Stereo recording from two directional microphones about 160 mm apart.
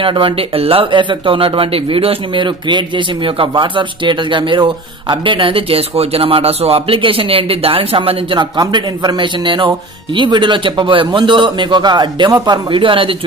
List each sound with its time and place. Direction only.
0.0 s a man's voice: 30° right (ahead or behind)